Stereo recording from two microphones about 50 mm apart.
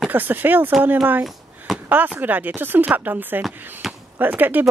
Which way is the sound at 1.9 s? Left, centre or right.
Right.